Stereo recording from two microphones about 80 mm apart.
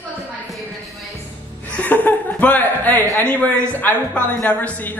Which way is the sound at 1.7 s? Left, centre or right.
Left.